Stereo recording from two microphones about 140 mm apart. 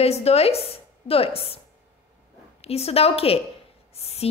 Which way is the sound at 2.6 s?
45° left (ahead or behind).